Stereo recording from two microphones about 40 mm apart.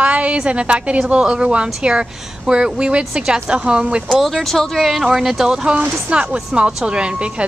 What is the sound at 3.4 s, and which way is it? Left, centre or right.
Speech, right.